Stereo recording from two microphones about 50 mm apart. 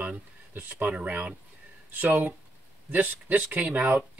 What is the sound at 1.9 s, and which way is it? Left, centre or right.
Speech, right.